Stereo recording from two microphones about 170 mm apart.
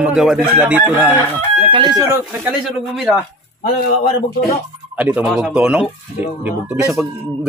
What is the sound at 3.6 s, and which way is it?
Speech, 60° left (ahead or behind).